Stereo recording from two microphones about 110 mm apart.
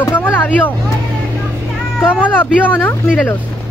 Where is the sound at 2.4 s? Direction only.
20° left (ahead or behind).